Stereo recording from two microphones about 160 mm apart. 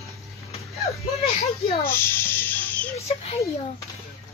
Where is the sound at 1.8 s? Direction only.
15° left (ahead or behind).